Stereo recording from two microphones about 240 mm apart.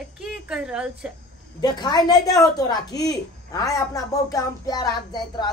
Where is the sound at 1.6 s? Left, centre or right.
Centre.